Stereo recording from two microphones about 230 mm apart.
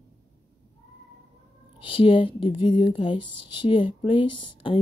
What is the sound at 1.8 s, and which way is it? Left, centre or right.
Speech, left.